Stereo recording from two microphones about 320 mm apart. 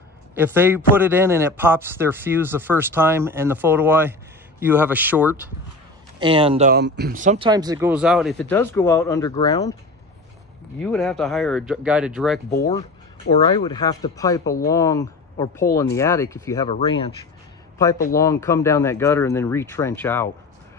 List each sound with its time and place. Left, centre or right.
0.3 s speech: centre
6.7 s speech: right; by 9.8 s centre
10.8 s speech: centre
13.4 s speech: centre
18.1 s speech: centre